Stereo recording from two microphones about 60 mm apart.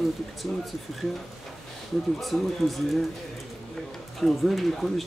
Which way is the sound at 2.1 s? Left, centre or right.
Centre.